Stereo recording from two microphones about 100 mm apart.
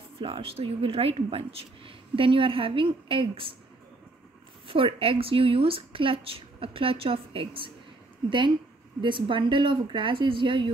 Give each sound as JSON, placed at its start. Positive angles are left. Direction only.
{"t": 0.2, "sound": "speech", "side_deg": -70}
{"t": 4.6, "sound": "speech", "side_deg": -60}
{"t": 9.0, "sound": "speech", "side_deg": -55}